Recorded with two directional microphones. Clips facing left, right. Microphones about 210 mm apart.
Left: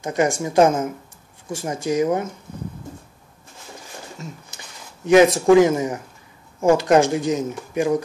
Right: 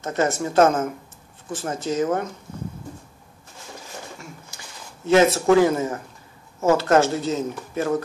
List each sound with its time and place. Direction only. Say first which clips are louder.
0.0 s speech: left 2 dB; 15° left (ahead or behind)
5.0 s speech: left 3 dB; 15° left (ahead or behind)